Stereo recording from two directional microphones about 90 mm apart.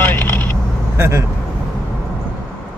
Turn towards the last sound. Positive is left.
turn(degrees=-30)  # may be behind; listen again after turning